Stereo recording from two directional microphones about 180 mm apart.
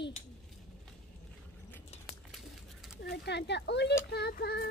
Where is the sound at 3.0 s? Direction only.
65° left (ahead or behind).